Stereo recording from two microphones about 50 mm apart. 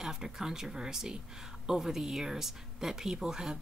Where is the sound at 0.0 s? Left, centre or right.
Centre.